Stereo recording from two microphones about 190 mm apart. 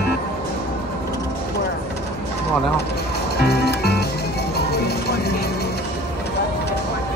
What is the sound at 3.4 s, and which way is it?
Music, 60° left (ahead or behind).